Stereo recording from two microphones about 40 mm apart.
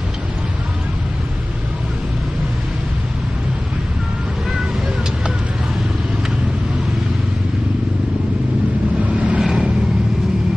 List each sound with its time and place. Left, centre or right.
9.0 s vehicle: right